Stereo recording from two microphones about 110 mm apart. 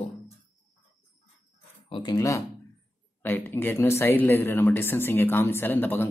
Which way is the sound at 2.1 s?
30° left (ahead or behind).